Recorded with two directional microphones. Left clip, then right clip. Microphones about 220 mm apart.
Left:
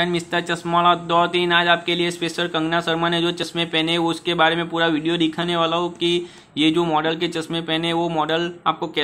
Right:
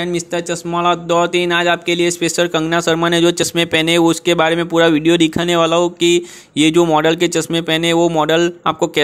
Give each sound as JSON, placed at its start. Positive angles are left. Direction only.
{"t": 0.0, "sound": "speech", "side_deg": -30}